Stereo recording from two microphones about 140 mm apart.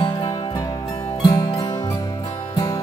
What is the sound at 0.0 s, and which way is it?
Music, 35° left (ahead or behind).